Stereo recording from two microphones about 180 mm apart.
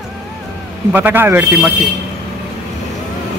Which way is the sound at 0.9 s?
10° right (ahead or behind).